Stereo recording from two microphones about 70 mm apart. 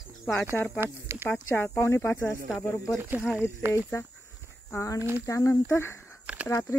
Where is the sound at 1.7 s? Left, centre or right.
Left.